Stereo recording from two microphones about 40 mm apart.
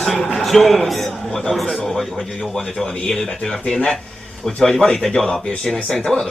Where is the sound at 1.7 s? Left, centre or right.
Centre.